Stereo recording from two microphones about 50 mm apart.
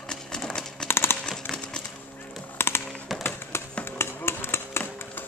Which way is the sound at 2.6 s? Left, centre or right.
Left.